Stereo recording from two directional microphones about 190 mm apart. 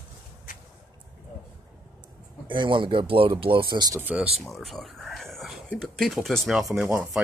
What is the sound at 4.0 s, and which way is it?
Speech, 5° right (ahead or behind).